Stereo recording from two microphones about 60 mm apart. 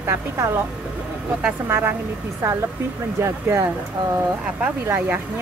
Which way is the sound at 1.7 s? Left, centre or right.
Right.